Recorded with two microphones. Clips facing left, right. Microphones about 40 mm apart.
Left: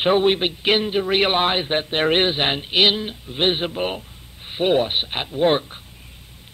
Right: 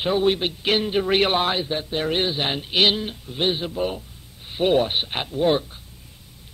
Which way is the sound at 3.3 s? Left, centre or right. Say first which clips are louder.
Left 3 dB; left.